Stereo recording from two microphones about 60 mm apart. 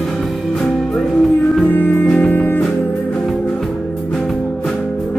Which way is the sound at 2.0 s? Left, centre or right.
Left.